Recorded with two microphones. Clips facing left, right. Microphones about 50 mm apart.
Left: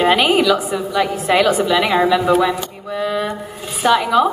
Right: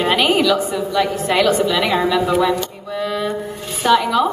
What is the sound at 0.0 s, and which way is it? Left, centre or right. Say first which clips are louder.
A woman's voice: left 2 dB; centre.